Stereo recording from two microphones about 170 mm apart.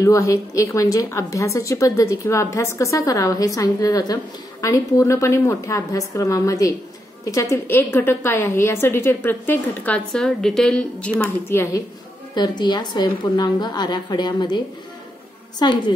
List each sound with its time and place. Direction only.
0.0 s a woman's voice: 20° left (ahead or behind)
15.6 s a woman's voice: 25° left (ahead or behind)